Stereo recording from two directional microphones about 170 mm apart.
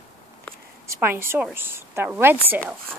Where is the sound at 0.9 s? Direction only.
15° right (ahead or behind).